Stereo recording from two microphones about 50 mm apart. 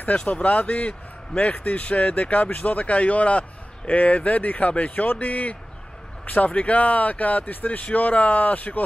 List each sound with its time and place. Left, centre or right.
0.2 s speech: left